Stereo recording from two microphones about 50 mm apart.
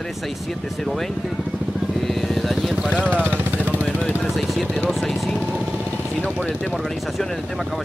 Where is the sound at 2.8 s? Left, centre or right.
Right.